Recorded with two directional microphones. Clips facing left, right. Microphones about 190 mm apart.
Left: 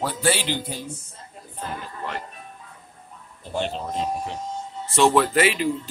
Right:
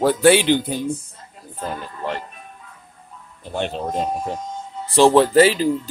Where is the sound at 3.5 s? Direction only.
55° right (ahead or behind).